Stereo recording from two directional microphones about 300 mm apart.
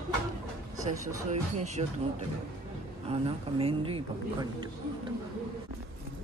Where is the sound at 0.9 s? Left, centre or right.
Right.